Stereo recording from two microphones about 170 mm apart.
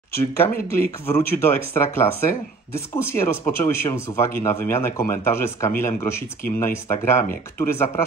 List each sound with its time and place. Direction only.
0.1 s speech: 15° left (ahead or behind)